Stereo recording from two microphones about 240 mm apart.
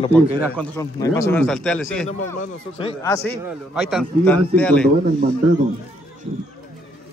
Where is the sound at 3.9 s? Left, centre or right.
Centre.